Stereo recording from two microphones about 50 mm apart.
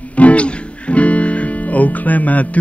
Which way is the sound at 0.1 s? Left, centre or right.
Left.